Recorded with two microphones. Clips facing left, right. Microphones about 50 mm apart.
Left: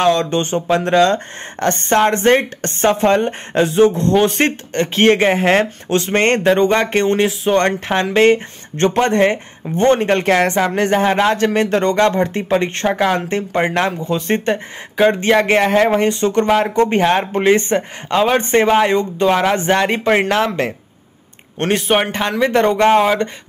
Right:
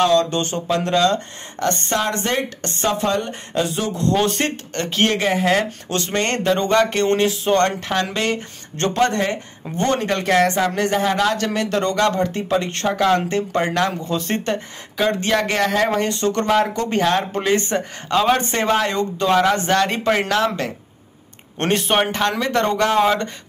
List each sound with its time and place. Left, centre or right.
0.0 s speech: left
5.9 s speech: left
6.1 s speech: left
7.1 s a man's voice: centre
7.6 s speech: left
21.5 s a man's voice: centre; by 23.0 s left
23.0 s a man's voice: centre